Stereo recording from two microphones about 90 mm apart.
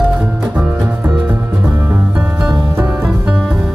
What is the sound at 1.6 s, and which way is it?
Music, 25° right (ahead or behind).